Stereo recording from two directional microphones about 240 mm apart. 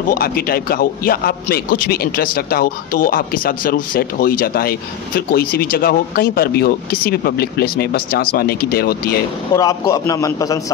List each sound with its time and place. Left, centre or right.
0.1 s a man's voice: left
9.5 s a man's voice: centre